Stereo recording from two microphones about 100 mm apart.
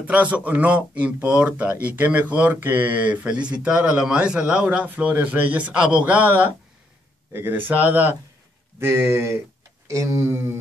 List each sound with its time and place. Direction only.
0.0 s speech: 15° right (ahead or behind)